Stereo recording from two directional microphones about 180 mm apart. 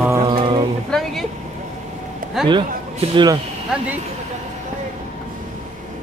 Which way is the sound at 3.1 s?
25° right (ahead or behind).